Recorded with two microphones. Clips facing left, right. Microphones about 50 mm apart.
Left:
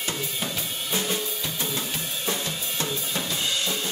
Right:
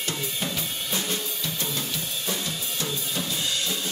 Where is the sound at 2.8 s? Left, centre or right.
Left.